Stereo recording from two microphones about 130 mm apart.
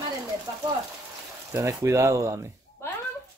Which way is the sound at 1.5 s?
25° right (ahead or behind).